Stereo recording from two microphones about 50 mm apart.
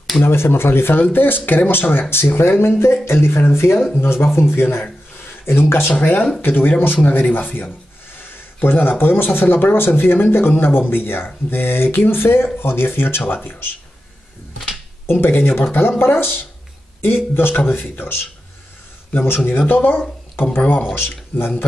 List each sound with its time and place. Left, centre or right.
0.2 s speech: left
15.0 s speech: left
20.9 s speech: left